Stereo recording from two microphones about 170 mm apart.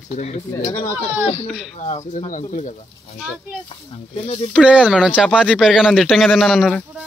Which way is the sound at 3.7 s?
35° left (ahead or behind).